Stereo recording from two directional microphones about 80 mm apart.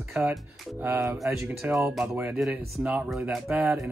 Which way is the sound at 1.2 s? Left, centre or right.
Centre.